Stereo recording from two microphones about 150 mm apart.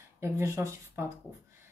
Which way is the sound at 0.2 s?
15° right (ahead or behind).